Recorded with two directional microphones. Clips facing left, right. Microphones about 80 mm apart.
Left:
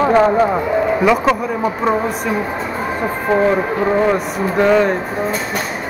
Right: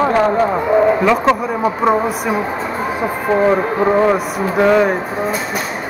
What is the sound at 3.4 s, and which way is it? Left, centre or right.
Speech, centre.